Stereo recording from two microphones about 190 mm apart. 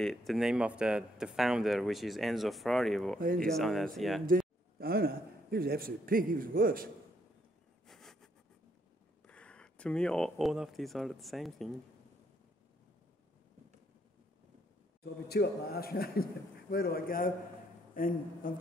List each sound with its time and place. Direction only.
0.0 s speech: centre (ahead or behind)
3.2 s speech: 45° right (ahead or behind)
3.4 s speech: centre (ahead or behind)
4.3 s a man's voice: 55° right (ahead or behind)
7.8 s a sound: centre (ahead or behind)
9.3 s speech: 5° left (ahead or behind)
15.2 s a man's voice: 55° left (ahead or behind)